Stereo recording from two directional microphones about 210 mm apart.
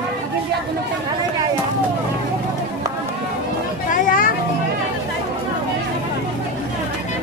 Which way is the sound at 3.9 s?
40° left (ahead or behind).